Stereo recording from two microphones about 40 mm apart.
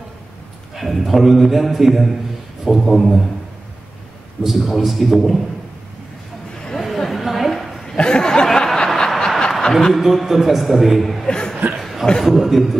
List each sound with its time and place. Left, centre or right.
0.7 s a man's voice: centre
4.4 s a man's voice: centre
6.8 s a sound: centre
7.8 s a sound: centre
8.6 s snicker: centre
9.6 s speech: centre
10.0 s a man's voice: centre
11.2 s chuckle: centre
11.8 s chuckle: centre
12.2 s a man's voice: centre